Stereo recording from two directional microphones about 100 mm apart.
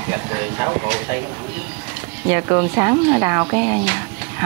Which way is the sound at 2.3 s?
30° right (ahead or behind).